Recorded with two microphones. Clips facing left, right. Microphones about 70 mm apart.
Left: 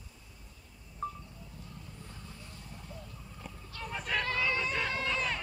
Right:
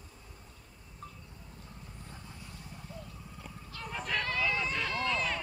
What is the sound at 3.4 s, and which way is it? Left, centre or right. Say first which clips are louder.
Horse: left 1 dB; centre.